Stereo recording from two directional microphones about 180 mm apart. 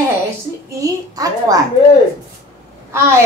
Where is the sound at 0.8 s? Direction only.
20° right (ahead or behind).